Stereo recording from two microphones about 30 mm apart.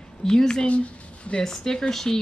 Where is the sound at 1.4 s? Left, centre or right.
Centre.